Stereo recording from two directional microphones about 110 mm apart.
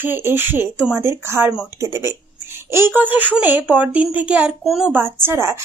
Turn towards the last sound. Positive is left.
turn(degrees=-25)  # may be behind; listen again after turning